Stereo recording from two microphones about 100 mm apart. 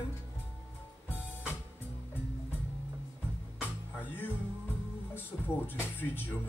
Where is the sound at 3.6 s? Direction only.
20° left (ahead or behind).